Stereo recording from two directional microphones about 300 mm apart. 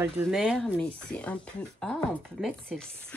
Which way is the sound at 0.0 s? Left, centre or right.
Centre.